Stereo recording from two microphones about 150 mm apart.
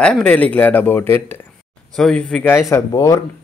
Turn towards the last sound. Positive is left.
turn(degrees=20)  # may be behind; listen again after turning